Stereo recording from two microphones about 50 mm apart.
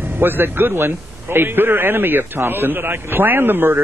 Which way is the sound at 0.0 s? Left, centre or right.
Right.